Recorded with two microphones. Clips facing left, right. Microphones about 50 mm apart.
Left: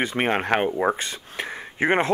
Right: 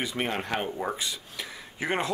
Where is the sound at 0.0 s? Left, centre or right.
Left.